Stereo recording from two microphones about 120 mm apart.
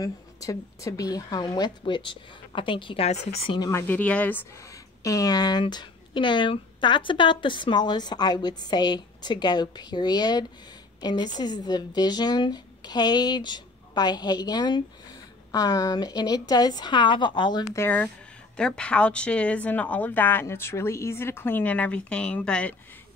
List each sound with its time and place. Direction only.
0.0 s speech: 30° left (ahead or behind); by 3.1 s 45° left (ahead or behind)
3.1 s a woman's voice: 60° left (ahead or behind)
3.7 s speech: 15° left (ahead or behind); by 17.7 s 40° left (ahead or behind)
17.7 s a woman's voice: 15° left (ahead or behind)